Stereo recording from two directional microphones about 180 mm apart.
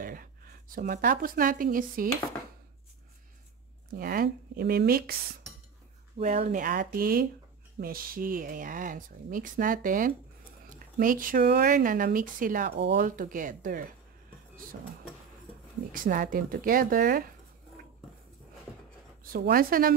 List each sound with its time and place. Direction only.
0.0 s speech: 50° right (ahead or behind)
3.9 s speech: 55° right (ahead or behind)
6.1 s speech: 40° right (ahead or behind)
15.9 s speech: 50° right (ahead or behind)
19.2 s speech: 55° right (ahead or behind)